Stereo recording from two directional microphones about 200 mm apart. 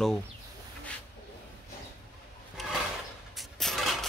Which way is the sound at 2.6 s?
Centre (ahead or behind).